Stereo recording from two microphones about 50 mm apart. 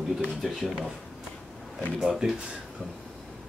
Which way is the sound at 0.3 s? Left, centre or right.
Centre.